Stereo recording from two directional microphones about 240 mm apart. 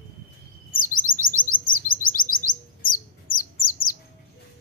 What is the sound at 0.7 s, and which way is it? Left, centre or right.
Chirp, left.